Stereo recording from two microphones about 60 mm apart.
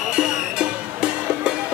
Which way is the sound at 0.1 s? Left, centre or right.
Centre.